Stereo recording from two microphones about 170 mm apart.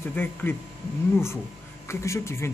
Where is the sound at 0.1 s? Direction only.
10° left (ahead or behind).